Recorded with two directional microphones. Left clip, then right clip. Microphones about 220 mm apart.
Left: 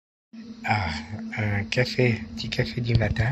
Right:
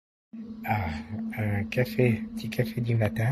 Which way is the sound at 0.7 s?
Centre (ahead or behind).